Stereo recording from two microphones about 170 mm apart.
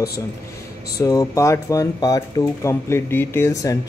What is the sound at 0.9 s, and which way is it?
Speech, 20° left (ahead or behind).